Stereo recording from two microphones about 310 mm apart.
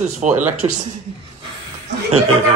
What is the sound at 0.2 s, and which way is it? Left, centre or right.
Speech, right.